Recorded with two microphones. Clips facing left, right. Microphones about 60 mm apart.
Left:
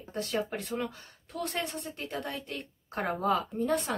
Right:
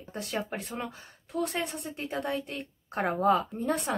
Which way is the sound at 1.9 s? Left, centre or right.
Right.